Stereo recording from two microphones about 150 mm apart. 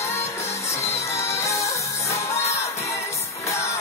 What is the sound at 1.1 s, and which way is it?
Music, 20° left (ahead or behind).